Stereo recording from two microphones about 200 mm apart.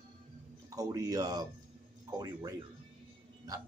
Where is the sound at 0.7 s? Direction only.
15° right (ahead or behind).